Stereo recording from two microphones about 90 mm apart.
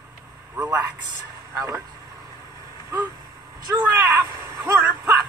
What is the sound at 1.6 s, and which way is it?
Speech, 35° right (ahead or behind).